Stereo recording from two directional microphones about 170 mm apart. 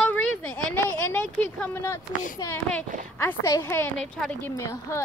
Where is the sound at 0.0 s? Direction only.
10° left (ahead or behind).